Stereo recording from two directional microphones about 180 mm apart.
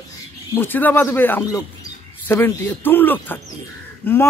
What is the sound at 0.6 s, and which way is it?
Speech, 10° left (ahead or behind).